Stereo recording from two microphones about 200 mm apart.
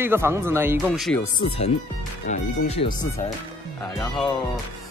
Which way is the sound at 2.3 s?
35° left (ahead or behind).